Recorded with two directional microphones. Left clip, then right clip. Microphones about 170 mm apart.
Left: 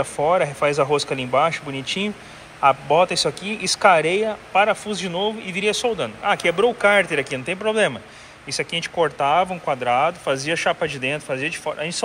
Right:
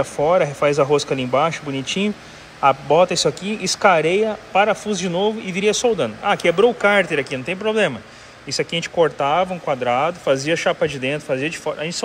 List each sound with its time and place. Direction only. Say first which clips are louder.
0.0 s a man's voice: right 2 dB; 15° right (ahead or behind)